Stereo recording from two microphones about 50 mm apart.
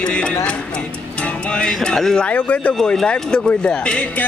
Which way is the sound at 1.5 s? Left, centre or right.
Centre.